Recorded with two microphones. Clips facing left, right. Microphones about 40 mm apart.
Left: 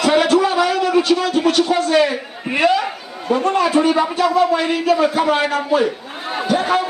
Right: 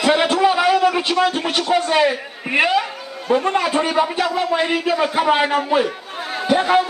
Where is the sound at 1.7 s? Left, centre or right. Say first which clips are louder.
Left 1 dB; centre.